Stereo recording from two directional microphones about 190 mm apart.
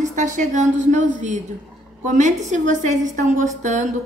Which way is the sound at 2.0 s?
40° right (ahead or behind).